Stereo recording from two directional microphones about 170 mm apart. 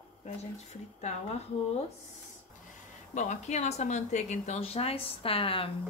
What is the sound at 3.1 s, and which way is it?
Speech, 45° left (ahead or behind).